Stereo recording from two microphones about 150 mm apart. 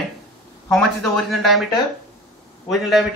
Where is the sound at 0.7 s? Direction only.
5° left (ahead or behind).